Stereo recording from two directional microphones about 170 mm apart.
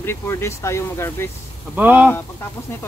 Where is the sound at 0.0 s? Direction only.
15° left (ahead or behind).